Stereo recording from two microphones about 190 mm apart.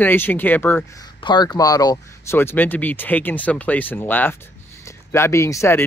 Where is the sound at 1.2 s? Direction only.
20° left (ahead or behind).